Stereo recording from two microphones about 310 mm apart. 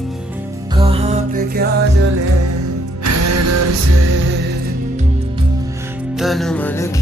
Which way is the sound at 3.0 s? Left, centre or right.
Right.